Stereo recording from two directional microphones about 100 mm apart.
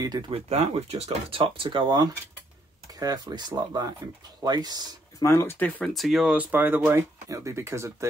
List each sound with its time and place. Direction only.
0.3 s speech: 90° right; by 2.0 s 55° right (ahead or behind)
3.0 s speech: 40° right (ahead or behind)
5.2 s speech: 25° left (ahead or behind)
5.9 s speech: centre (ahead or behind)
6.3 s speech: 15° right (ahead or behind)